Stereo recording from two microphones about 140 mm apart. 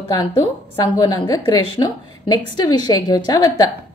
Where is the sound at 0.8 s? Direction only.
25° left (ahead or behind).